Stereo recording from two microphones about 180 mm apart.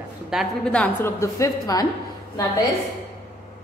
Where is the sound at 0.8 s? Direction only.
15° left (ahead or behind).